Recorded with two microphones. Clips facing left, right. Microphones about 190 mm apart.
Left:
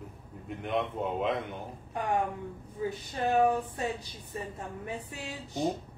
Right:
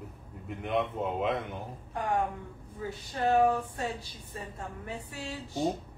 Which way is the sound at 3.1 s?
20° left (ahead or behind).